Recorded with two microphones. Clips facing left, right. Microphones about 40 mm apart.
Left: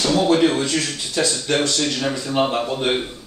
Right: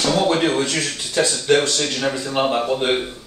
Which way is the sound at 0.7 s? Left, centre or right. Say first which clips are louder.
Right 1 dB; centre.